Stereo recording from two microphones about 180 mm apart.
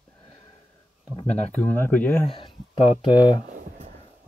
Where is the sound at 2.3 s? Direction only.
30° left (ahead or behind).